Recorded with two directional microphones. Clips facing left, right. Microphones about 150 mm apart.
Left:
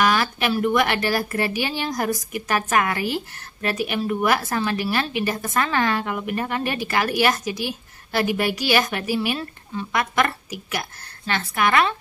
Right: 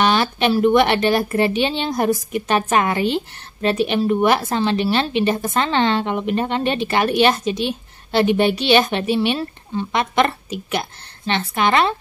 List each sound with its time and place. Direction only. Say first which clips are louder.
0.0 s a woman's voice: right 3 dB; 25° right (ahead or behind)